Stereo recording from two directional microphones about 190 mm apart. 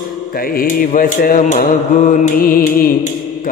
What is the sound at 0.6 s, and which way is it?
Mantra, 45° left (ahead or behind).